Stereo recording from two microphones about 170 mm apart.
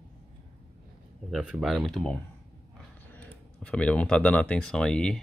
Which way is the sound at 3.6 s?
5° left (ahead or behind).